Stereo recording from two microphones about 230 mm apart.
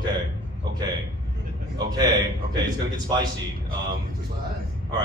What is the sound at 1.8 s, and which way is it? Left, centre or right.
Speech, centre.